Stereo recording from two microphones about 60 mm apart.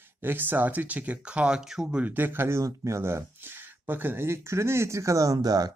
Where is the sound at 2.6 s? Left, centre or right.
Right.